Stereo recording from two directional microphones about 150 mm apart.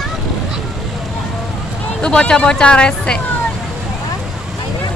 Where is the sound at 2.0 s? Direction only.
5° left (ahead or behind).